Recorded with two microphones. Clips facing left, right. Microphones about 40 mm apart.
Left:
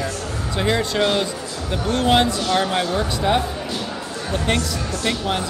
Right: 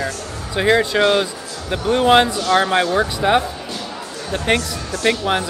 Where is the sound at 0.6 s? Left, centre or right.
Right.